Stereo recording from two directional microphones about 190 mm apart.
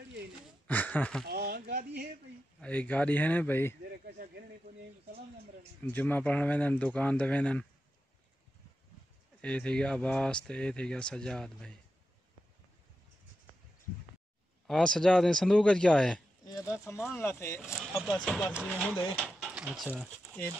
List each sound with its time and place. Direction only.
0.7 s speech: 10° left (ahead or behind)
1.2 s a sound: 55° right (ahead or behind)
2.6 s speech: 10° left (ahead or behind)
4.0 s a sound: 55° right (ahead or behind)
5.9 s speech: 10° left (ahead or behind)
9.4 s speech: 5° left (ahead or behind)
14.7 s speech: 5° left (ahead or behind)
16.4 s speech: 15° left (ahead or behind)
18.0 s speech: centre (ahead or behind)